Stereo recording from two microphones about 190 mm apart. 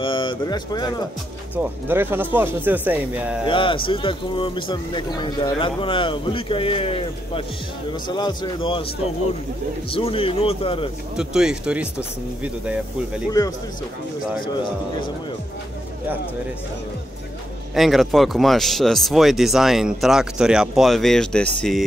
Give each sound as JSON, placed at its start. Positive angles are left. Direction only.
{"t": 0.0, "sound": "speech", "side_deg": 25}
{"t": 1.9, "sound": "speech", "side_deg": -10}
{"t": 3.4, "sound": "speech", "side_deg": 25}
{"t": 9.9, "sound": "speech", "side_deg": 30}
{"t": 11.1, "sound": "speech", "side_deg": -5}
{"t": 14.4, "sound": "speech", "side_deg": 25}
{"t": 17.7, "sound": "speech", "side_deg": 0}